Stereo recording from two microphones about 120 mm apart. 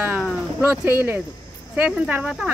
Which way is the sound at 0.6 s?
15° right (ahead or behind).